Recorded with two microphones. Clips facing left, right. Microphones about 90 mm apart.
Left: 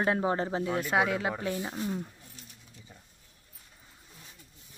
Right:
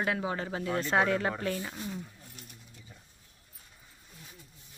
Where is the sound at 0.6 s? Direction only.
10° left (ahead or behind).